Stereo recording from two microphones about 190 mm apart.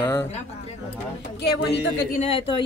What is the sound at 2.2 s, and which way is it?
Speech, 30° left (ahead or behind).